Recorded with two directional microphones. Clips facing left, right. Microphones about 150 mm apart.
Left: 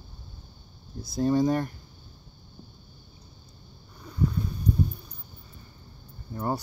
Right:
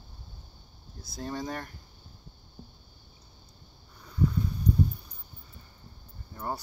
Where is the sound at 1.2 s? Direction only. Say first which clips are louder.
Left 12 dB; 20° left (ahead or behind).